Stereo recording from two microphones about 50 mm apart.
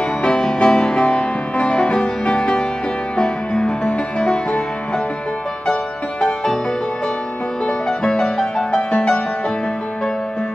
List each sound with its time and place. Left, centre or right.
0.2 s music: centre
6.2 s music: centre
7.6 s music: centre